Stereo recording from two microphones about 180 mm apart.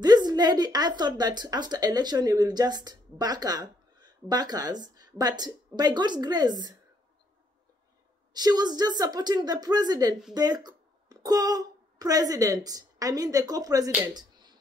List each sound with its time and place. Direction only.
0.0 s a woman's voice: 20° right (ahead or behind)
8.3 s a woman's voice: 20° right (ahead or behind)